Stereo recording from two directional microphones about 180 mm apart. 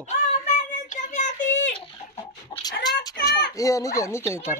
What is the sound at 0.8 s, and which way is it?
Child singing, 45° left (ahead or behind).